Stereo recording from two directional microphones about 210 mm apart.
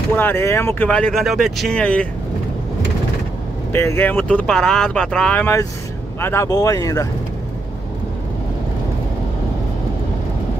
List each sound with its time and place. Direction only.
0.1 s speech: 10° left (ahead or behind)
3.7 s speech: 10° left (ahead or behind)